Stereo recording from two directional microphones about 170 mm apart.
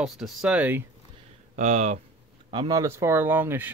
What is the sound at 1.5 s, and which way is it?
Speech, 45° right (ahead or behind).